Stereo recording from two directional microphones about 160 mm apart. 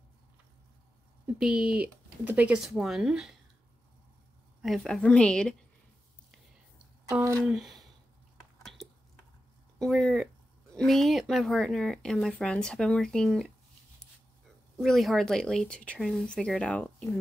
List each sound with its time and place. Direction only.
1.2 s speech: 5° right (ahead or behind)
4.6 s speech: centre (ahead or behind)
7.1 s speech: 20° right (ahead or behind)
7.4 s speech: centre (ahead or behind)
9.8 s speech: centre (ahead or behind)
14.8 s speech: centre (ahead or behind)